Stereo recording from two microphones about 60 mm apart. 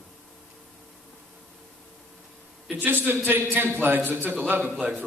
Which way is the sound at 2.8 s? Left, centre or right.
Right.